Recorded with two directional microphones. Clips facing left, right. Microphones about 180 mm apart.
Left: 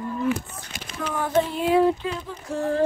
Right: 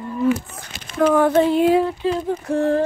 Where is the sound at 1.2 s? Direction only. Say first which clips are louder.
Right 8 dB; 65° right (ahead or behind).